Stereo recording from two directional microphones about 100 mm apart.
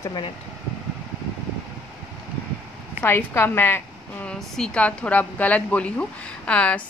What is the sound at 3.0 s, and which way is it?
A woman's voice, 20° left (ahead or behind).